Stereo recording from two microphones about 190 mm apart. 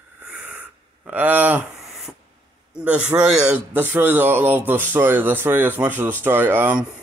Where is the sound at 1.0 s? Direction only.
10° right (ahead or behind).